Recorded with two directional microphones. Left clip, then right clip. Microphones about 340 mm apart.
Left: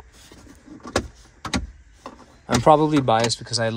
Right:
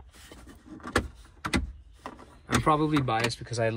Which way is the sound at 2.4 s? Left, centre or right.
Centre.